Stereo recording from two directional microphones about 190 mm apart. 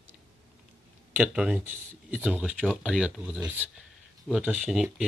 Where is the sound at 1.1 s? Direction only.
5° right (ahead or behind).